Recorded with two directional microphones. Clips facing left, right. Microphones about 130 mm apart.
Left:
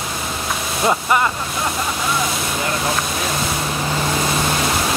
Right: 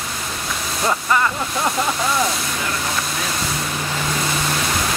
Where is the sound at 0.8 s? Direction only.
20° left (ahead or behind).